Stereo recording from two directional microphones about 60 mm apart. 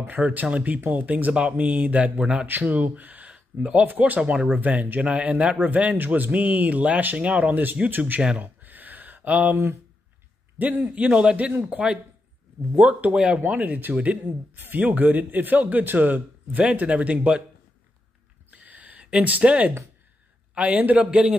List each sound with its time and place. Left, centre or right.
0.3 s speech: right
2.4 s speech: right
4.6 s speech: right
8.4 s a sound: right
10.8 s speech: centre
12.7 s speech: right
13.5 s speech: right
18.5 s a sound: right
20.5 s speech: right